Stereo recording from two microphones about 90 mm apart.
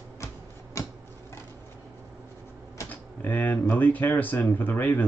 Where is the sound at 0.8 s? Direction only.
35° left (ahead or behind).